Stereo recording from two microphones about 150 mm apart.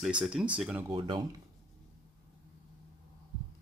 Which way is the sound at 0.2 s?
5° right (ahead or behind).